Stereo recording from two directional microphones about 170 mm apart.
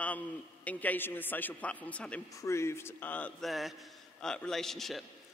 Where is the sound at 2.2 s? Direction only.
20° left (ahead or behind).